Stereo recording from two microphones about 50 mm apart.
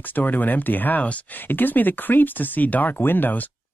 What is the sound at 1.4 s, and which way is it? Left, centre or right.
Speech, left.